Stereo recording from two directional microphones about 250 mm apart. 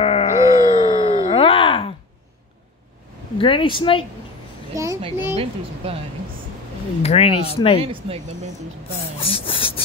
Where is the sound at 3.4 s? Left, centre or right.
Centre.